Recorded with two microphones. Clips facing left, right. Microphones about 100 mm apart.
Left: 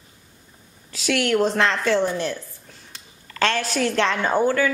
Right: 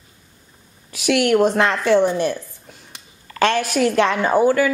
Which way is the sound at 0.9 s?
15° right (ahead or behind).